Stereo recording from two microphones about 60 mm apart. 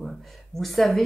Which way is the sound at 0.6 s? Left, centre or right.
Centre.